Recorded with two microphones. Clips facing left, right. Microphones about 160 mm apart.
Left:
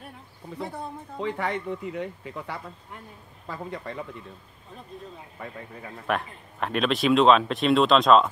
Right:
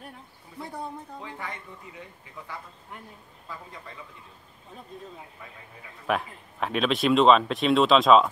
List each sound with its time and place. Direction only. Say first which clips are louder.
1.2 s speech: left 16 dB; 75° left (ahead or behind)
5.4 s speech: left 8 dB; 70° left (ahead or behind)
6.0 s speech: right 1 dB; centre (ahead or behind)